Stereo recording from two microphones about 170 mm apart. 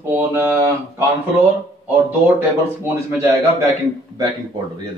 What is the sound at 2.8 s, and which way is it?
Speech, 15° right (ahead or behind).